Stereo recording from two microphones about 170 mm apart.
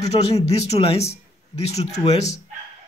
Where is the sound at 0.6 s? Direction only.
35° left (ahead or behind).